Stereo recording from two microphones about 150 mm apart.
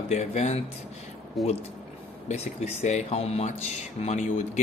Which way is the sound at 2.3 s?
45° left (ahead or behind).